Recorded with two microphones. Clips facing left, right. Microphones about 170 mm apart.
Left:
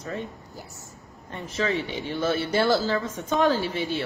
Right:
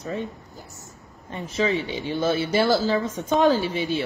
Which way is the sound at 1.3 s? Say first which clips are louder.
Right 3 dB; 20° right (ahead or behind).